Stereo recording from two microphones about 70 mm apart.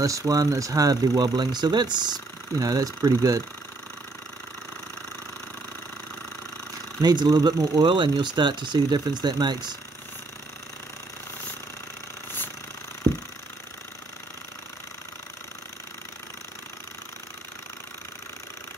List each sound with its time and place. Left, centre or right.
0.0 s speech: right
7.0 s speech: right